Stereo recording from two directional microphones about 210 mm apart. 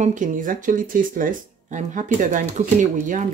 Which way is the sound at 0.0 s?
35° right (ahead or behind).